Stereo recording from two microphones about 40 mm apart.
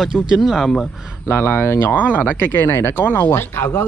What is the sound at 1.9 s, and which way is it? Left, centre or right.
Speech, left.